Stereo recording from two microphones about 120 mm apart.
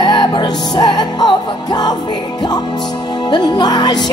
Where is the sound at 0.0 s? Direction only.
35° left (ahead or behind).